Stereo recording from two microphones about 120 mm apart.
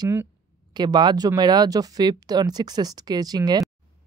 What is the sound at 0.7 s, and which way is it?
Speech, 35° right (ahead or behind).